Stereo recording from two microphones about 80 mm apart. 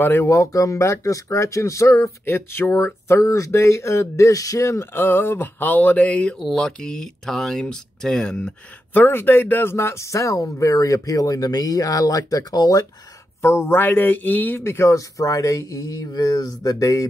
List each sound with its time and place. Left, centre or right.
0.0 s speech: left
0.3 s speech: left; by 6.3 s centre
6.3 s speech: centre
8.9 s speech: left
13.4 s speech: left